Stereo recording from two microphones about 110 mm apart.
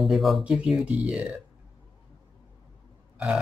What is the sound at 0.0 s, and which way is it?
Speech, centre (ahead or behind).